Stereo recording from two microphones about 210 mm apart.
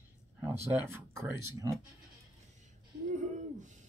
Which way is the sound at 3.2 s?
35° right (ahead or behind).